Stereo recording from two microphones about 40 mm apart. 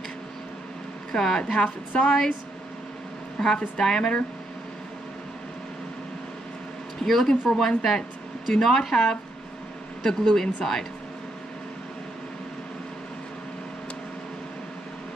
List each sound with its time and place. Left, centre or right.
1.1 s speech: centre
1.4 s a woman's voice: left
3.3 s speech: centre
7.0 s speech: centre